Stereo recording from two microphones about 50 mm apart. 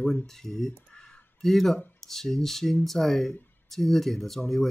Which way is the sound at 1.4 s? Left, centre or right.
Centre.